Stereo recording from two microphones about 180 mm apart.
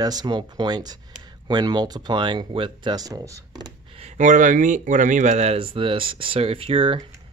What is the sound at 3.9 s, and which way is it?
Speech, 35° right (ahead or behind).